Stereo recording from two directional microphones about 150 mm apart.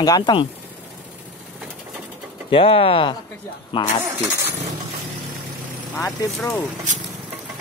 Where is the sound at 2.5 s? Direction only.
40° left (ahead or behind).